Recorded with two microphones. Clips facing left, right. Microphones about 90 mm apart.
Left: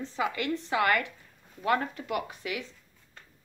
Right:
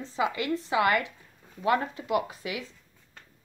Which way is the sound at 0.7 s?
20° right (ahead or behind).